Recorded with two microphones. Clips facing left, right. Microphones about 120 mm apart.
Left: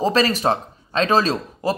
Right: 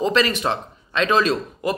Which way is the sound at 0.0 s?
35° left (ahead or behind).